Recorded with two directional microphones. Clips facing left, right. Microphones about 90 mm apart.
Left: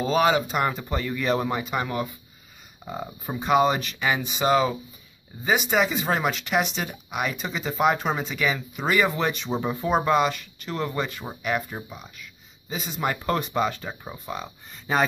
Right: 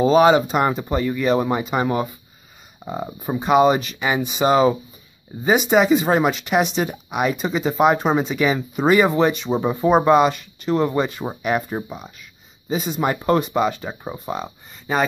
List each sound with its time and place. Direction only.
0.0 s speech: 25° right (ahead or behind)
0.9 s speech: 10° right (ahead or behind)
1.5 s speech: 20° right (ahead or behind)
4.5 s speech: 30° right (ahead or behind); by 13.9 s 10° right (ahead or behind)
14.0 s speech: 25° right (ahead or behind)
14.9 s speech: centre (ahead or behind)